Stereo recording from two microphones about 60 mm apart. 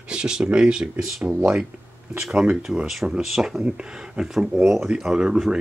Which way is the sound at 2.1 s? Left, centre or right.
Centre.